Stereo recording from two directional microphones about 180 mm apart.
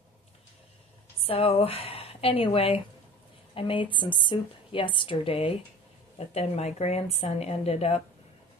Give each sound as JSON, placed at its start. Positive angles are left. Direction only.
{"t": 1.2, "sound": "a woman's voice", "side_deg": 30}